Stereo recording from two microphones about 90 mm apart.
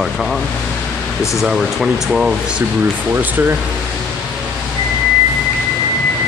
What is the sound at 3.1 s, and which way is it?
Speech, 20° right (ahead or behind).